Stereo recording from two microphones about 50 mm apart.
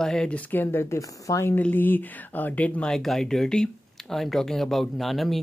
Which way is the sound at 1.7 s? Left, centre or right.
Left.